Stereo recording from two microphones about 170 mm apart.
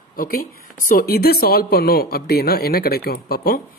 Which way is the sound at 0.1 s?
60° left (ahead or behind).